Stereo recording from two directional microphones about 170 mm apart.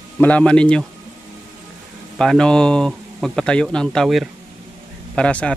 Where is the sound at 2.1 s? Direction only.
5° left (ahead or behind).